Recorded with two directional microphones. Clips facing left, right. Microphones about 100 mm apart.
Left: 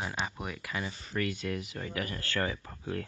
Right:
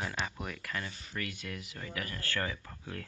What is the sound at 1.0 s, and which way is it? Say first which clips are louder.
Speech: left 7 dB; 40° left (ahead or behind).